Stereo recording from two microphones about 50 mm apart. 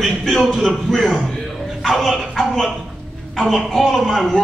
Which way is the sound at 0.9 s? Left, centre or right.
Centre.